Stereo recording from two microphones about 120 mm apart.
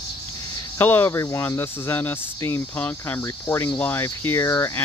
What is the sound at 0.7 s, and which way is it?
Speech, 15° left (ahead or behind).